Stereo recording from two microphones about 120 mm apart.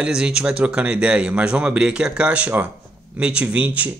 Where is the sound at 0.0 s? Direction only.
5° right (ahead or behind).